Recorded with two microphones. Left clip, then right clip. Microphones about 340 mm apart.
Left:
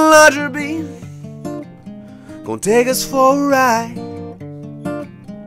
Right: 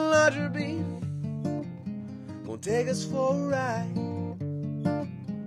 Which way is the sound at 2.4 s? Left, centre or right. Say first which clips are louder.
Left 14 dB; left.